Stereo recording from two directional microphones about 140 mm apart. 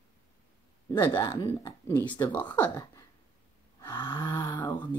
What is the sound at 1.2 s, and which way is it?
Speech, 25° left (ahead or behind).